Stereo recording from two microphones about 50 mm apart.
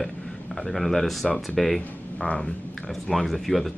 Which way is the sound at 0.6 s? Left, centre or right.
Centre.